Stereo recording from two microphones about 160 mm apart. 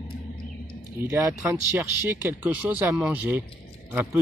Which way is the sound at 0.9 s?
15° right (ahead or behind).